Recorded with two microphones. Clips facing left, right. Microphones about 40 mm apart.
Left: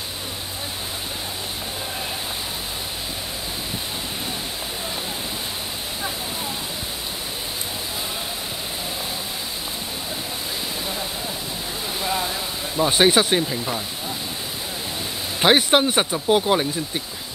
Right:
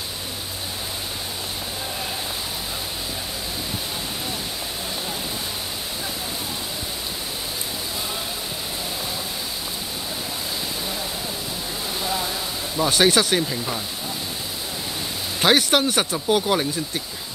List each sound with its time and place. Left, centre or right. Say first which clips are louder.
12.0 s a sound: left 2 dB; centre
12.7 s speech: left 1 dB; left
15.4 s speech: left 2 dB; left